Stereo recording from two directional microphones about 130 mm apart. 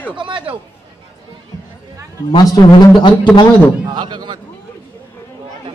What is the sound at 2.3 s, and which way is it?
Speech, 30° left (ahead or behind).